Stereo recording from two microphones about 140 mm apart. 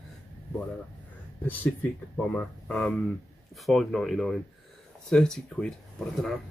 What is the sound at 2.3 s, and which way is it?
Speech, 5° left (ahead or behind).